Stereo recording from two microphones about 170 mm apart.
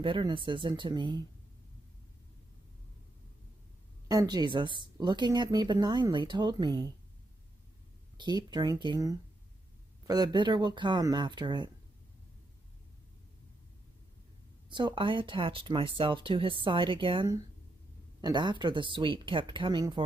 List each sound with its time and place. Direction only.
0.0 s a woman's voice: 30° right (ahead or behind)
4.1 s a woman's voice: 20° right (ahead or behind)
8.2 s a woman's voice: 25° right (ahead or behind)
14.7 s a woman's voice: 30° right (ahead or behind)